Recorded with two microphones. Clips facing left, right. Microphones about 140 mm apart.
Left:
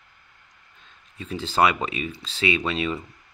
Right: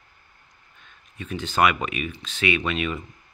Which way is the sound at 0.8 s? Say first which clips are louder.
Right 1 dB; 30° left (ahead or behind).